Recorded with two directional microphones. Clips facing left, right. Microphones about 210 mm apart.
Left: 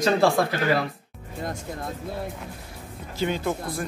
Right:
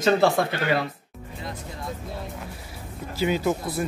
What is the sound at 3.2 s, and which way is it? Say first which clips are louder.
Speech: right 2 dB; 5° right (ahead or behind).